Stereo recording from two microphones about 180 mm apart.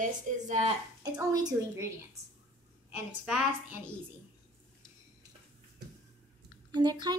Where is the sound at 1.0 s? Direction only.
20° right (ahead or behind).